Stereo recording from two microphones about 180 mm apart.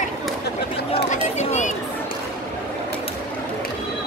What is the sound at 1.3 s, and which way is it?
Chatter, 40° left (ahead or behind).